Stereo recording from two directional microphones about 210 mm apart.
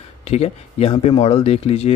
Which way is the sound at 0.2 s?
30° left (ahead or behind).